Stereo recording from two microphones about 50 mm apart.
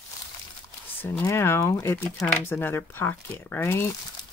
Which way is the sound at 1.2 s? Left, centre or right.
Left.